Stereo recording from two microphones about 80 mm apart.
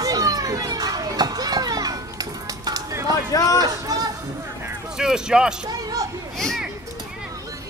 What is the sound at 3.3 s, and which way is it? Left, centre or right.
Speech, left.